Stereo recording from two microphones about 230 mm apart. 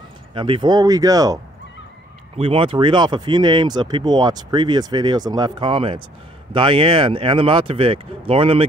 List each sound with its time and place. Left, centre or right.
0.3 s speech: right